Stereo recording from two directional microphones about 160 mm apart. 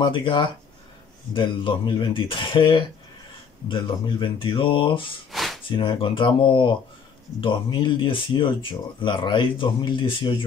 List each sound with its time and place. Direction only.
0.0 s speech: 30° left (ahead or behind)
5.3 s a sound: centre (ahead or behind)
5.7 s speech: 30° left (ahead or behind)